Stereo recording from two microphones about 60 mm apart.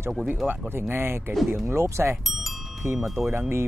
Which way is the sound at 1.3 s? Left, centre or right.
Centre.